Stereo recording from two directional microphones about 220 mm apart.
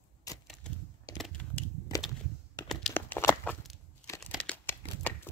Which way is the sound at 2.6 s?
5° left (ahead or behind).